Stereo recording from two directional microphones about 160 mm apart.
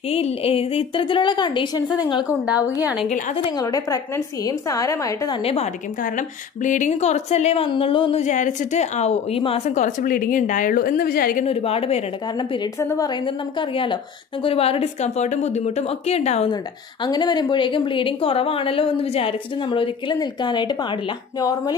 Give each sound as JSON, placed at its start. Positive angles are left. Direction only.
{"t": 0.1, "sound": "a woman's voice", "side_deg": 40}
{"t": 2.2, "sound": "a woman's voice", "side_deg": -10}
{"t": 3.4, "sound": "a woman's voice", "side_deg": 25}
{"t": 5.4, "sound": "a woman's voice", "side_deg": 40}
{"t": 6.1, "sound": "a woman's voice", "side_deg": 50}
{"t": 8.2, "sound": "a woman's voice", "side_deg": 50}
{"t": 9.8, "sound": "a woman's voice", "side_deg": 60}
{"t": 11.4, "sound": "a woman's voice", "side_deg": 40}
{"t": 13.6, "sound": "a woman's voice", "side_deg": 30}
{"t": 17.0, "sound": "a woman's voice", "side_deg": 25}